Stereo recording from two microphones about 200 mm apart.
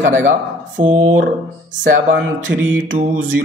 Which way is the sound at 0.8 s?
35° right (ahead or behind).